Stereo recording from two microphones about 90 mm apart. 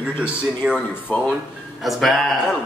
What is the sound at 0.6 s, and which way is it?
Speech, 10° right (ahead or behind).